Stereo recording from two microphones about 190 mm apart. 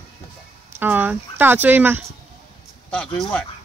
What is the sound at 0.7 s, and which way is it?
Speech, 10° right (ahead or behind).